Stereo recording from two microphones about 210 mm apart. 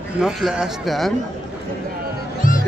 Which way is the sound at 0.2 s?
Centre (ahead or behind).